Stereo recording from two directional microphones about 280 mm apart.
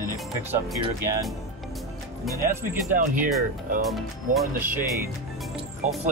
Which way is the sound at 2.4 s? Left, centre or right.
Right.